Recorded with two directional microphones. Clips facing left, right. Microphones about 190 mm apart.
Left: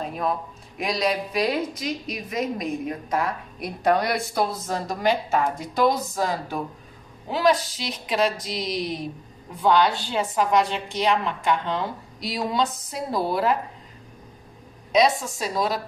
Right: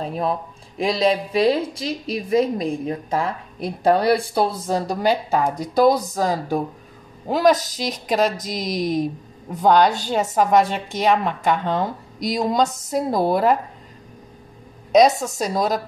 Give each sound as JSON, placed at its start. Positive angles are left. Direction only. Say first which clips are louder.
{"t": 0.0, "sound": "a woman's voice", "louder": "right 3 dB", "side_deg": -30}
{"t": 14.9, "sound": "a woman's voice", "louder": "right 5 dB", "side_deg": -40}